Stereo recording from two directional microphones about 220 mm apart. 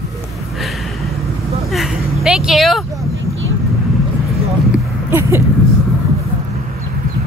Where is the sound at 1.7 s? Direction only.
Centre (ahead or behind).